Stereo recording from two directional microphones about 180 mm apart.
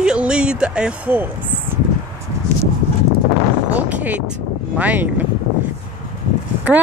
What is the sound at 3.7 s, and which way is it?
Speech, 10° right (ahead or behind).